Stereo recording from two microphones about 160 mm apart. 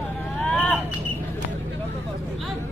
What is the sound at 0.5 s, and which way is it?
Vehicle, 5° left (ahead or behind).